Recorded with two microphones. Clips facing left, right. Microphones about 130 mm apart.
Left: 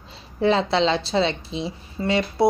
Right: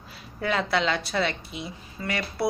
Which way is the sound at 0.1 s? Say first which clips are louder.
Left 8 dB; 25° left (ahead or behind).